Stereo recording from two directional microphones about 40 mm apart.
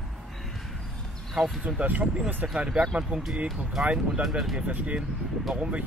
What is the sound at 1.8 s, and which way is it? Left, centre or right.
Speech, right.